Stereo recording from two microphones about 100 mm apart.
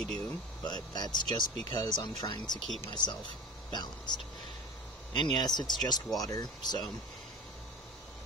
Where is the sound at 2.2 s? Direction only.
45° left (ahead or behind).